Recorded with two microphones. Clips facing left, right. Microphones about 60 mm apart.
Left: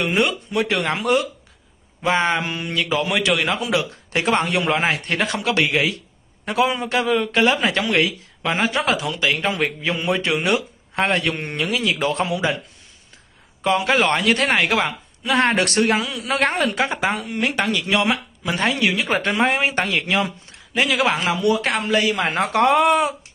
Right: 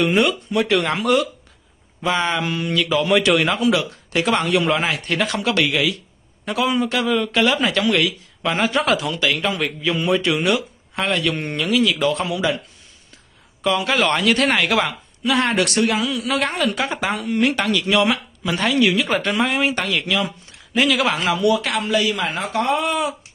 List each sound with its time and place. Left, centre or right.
0.0 s a man's voice: left
3.1 s a man's voice: centre
3.4 s a man's voice: left
13.7 s a man's voice: left
16.3 s a man's voice: left
17.2 s speech: centre
17.6 s a man's voice: left
22.1 s speech: left